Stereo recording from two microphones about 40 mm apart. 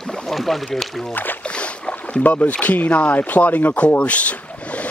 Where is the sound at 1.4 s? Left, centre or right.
Left.